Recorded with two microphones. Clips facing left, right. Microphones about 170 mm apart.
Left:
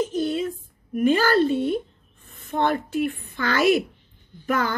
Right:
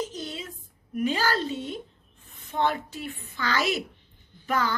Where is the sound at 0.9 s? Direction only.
55° left (ahead or behind).